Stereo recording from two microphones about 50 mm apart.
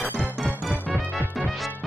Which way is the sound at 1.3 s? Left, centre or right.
Centre.